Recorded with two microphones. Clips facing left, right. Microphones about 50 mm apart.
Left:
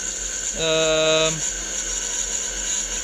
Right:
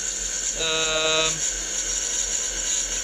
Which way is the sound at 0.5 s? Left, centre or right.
Centre.